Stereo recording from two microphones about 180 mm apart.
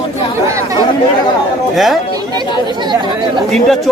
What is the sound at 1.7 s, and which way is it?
Speech, centre (ahead or behind).